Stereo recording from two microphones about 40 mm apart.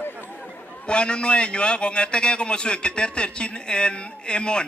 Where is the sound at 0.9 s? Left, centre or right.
Left.